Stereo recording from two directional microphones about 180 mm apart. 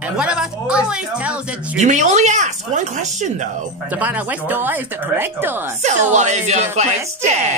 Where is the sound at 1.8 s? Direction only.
40° right (ahead or behind).